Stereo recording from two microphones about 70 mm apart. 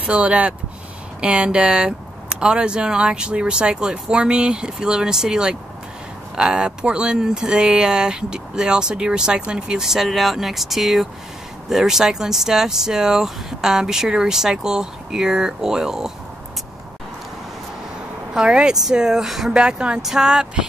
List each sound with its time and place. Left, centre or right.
0.0 s speech: centre
18.3 s speech: centre